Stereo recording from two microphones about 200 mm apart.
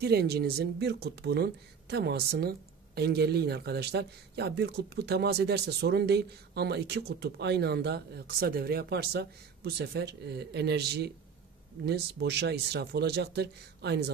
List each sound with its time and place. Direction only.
0.0 s speech: 55° right (ahead or behind)